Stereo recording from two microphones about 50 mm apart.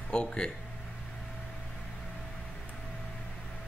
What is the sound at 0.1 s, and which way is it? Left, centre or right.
Speech, centre.